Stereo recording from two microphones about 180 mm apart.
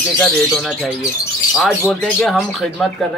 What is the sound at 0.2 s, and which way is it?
Speech, centre (ahead or behind).